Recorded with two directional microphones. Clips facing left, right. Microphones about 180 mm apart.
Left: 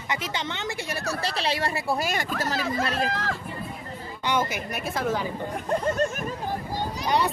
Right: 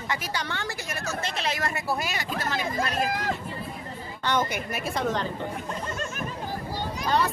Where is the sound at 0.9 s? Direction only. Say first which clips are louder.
Left 2 dB; 35° left (ahead or behind).